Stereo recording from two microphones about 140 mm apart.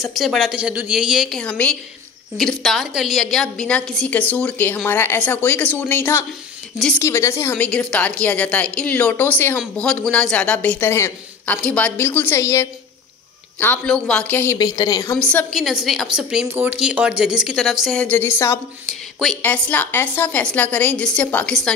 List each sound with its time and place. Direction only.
0.0 s a woman's voice: centre (ahead or behind); by 12.6 s 20° left (ahead or behind)
13.6 s speech: 10° left (ahead or behind)
14.6 s a woman's voice: 30° left (ahead or behind)
15.1 s a woman's voice: 10° left (ahead or behind)
16.4 s speech: 15° right (ahead or behind)
18.0 s speech: 15° left (ahead or behind)
18.9 s a sound: centre (ahead or behind)
19.4 s speech: 10° left (ahead or behind)